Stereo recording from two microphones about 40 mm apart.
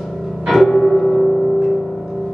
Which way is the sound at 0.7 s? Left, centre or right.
Centre.